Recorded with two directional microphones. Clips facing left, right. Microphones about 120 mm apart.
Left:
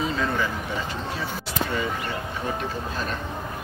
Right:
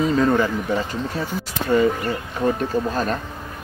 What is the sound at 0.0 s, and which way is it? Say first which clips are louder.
Speech: right 8 dB; 40° right (ahead or behind).